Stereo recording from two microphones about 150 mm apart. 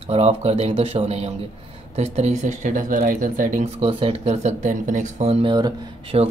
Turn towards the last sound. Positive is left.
turn(degrees=-45)  # may be behind; listen again after turning